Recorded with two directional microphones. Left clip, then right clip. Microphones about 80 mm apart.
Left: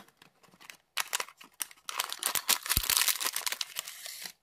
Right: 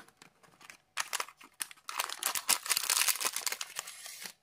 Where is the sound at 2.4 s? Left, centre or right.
Left.